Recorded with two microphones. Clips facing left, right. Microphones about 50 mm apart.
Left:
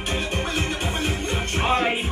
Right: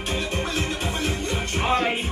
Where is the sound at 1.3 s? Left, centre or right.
Centre.